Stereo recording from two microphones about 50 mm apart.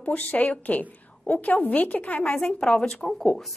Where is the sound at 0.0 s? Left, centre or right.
Left.